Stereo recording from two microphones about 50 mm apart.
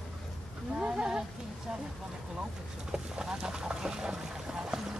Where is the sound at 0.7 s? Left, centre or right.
Centre.